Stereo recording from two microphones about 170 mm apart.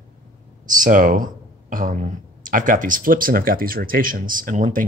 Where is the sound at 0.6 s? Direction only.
50° right (ahead or behind).